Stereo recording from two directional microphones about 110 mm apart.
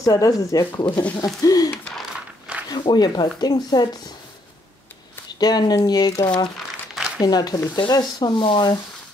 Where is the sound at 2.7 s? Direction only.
40° left (ahead or behind).